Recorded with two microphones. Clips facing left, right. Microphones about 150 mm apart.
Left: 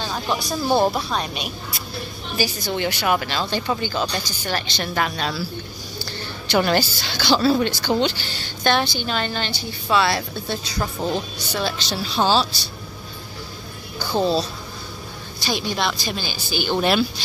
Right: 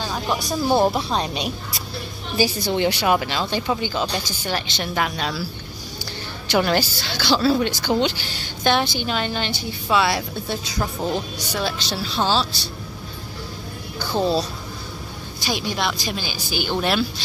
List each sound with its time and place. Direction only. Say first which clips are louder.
0.0 s speech: even; 5° right (ahead or behind); by 3.2 s 25° right (ahead or behind)
3.2 s speech: right 1 dB; 15° right (ahead or behind)
6.6 s speech: left 2 dB; centre (ahead or behind)
12.2 s speech: left 2 dB; 5° left (ahead or behind)
14.1 s speech: left 1 dB; 5° right (ahead or behind)
15.4 s speech: left 1 dB; 5° right (ahead or behind)